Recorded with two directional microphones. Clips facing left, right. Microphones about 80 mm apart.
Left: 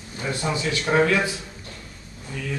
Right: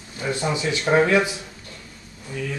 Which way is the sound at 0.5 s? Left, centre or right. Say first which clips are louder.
Right 2 dB; centre.